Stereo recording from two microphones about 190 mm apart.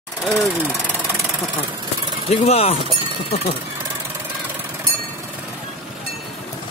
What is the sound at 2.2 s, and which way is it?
Speech, 30° left (ahead or behind).